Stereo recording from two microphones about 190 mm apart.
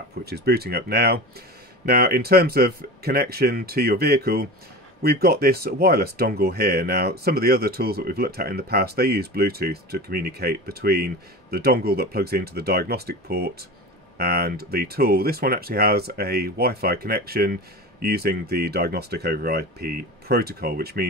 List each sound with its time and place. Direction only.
0.2 s speech: 55° right (ahead or behind)